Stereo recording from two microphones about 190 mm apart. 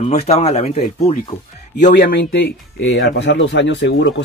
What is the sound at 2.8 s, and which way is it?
Speech, 90° left.